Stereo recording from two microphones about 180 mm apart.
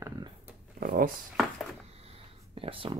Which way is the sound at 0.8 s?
50° right (ahead or behind).